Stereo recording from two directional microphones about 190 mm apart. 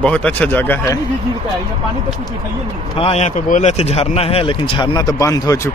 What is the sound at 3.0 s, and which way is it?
Speech, 35° left (ahead or behind).